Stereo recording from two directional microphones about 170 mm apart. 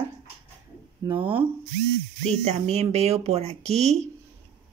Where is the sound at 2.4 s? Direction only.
40° right (ahead or behind).